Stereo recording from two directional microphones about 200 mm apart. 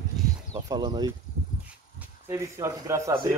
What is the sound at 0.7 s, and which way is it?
Speech, 20° right (ahead or behind).